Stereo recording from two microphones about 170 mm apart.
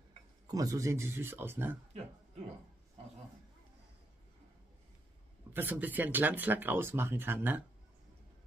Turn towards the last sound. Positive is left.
turn(degrees=-10)  # may be behind; listen again after turning